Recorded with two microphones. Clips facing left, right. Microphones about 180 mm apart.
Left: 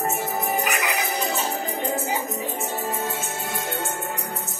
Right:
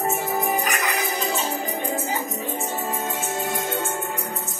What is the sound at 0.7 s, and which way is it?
Music, 15° left (ahead or behind).